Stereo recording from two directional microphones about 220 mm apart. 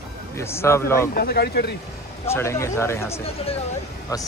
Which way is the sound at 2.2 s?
10° left (ahead or behind).